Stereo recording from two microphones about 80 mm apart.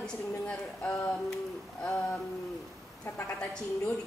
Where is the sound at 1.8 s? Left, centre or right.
Centre.